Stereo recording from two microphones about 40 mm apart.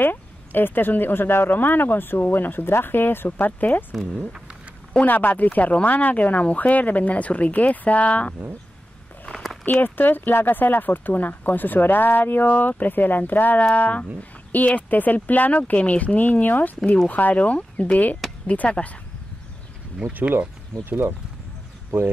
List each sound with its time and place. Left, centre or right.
0.0 s speech: left
3.9 s speech: centre
5.0 s speech: left
9.3 s a sound: centre
9.8 s speech: left
13.7 s speech: left
20.1 s speech: right
20.8 s speech: right